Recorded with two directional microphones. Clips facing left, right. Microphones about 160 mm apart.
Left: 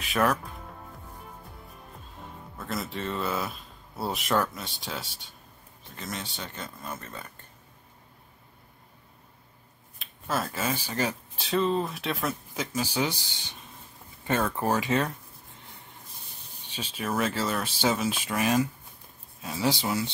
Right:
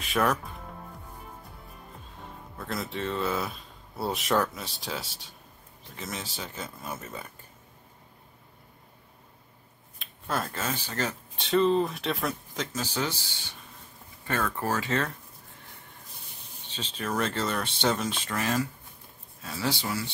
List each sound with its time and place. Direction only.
0.0 s speech: centre (ahead or behind)
2.5 s speech: centre (ahead or behind)
9.9 s speech: centre (ahead or behind)
12.7 s speech: 10° left (ahead or behind)
16.6 s speech: 10° left (ahead or behind)